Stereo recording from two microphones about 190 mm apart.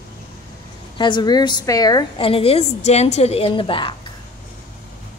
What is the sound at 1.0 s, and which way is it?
A woman's voice, 25° left (ahead or behind).